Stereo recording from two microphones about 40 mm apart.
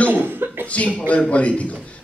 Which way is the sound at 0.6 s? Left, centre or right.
Left.